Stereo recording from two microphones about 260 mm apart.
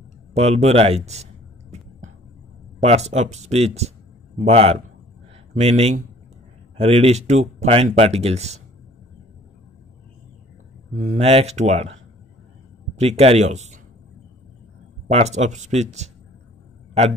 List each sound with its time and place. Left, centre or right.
0.3 s speech: right
2.8 s speech: right
11.0 s speech: right
13.0 s speech: right
15.0 s speech: right